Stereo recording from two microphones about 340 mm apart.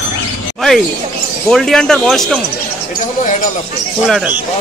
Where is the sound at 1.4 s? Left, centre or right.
Centre.